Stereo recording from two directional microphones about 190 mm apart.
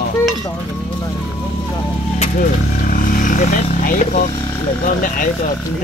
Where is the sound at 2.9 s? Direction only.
45° left (ahead or behind).